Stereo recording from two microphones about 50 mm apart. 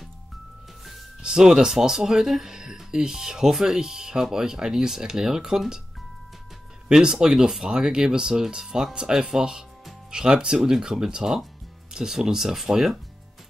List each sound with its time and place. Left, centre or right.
1.2 s speech: centre
6.9 s speech: centre